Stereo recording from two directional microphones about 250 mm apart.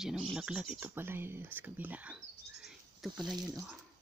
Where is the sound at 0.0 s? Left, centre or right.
Centre.